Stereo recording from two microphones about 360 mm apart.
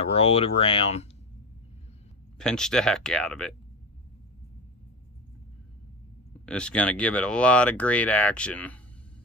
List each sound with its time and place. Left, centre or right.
0.0 s speech: centre
2.3 s speech: centre
6.4 s speech: centre